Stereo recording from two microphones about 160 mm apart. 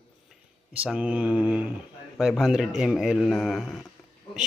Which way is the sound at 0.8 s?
10° right (ahead or behind).